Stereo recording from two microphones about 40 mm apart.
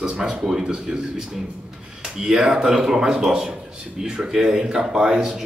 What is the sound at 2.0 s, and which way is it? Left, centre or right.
A man's voice, centre.